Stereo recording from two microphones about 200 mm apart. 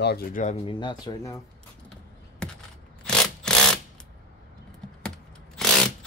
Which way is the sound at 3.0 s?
5° left (ahead or behind).